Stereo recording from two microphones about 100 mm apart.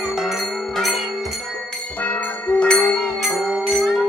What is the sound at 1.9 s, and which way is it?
Music, 15° left (ahead or behind).